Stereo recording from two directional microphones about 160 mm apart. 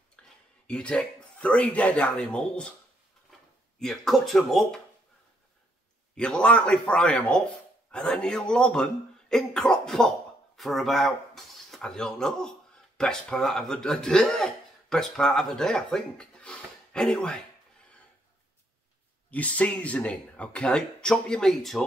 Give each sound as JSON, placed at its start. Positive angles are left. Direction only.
{"t": 0.2, "sound": "a sound", "side_deg": 5}
{"t": 0.7, "sound": "speech", "side_deg": 5}
{"t": 3.8, "sound": "speech", "side_deg": 0}
{"t": 6.1, "sound": "speech", "side_deg": 5}
{"t": 19.3, "sound": "speech", "side_deg": 10}